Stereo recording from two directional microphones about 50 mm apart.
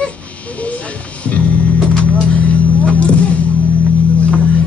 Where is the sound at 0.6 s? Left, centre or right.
Left.